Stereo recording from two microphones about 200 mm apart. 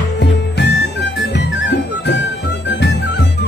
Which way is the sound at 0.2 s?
55° left (ahead or behind).